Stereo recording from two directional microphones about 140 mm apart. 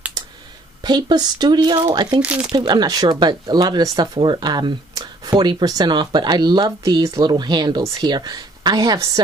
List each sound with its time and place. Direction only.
0.8 s speech: 30° right (ahead or behind)
2.2 s speech: 10° right (ahead or behind)
2.5 s speech: 30° right (ahead or behind)